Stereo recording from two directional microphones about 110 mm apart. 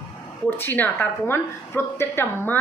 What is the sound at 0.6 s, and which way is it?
A woman's voice, 15° left (ahead or behind).